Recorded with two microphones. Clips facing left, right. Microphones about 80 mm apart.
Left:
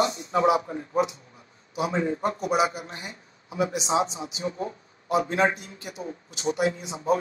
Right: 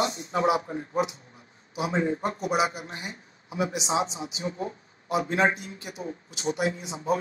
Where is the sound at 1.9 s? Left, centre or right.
Right.